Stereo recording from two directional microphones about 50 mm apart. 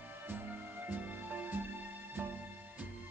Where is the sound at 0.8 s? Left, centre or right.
Right.